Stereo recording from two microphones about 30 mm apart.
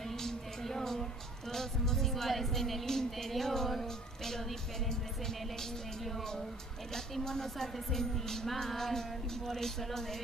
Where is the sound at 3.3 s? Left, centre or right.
Centre.